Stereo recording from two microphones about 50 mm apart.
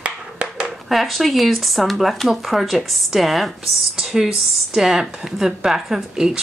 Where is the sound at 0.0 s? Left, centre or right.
Centre.